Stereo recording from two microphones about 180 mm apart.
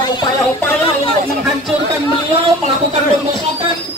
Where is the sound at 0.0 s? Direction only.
25° left (ahead or behind).